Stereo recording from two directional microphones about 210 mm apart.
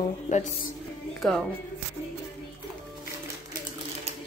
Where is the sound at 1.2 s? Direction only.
Centre (ahead or behind).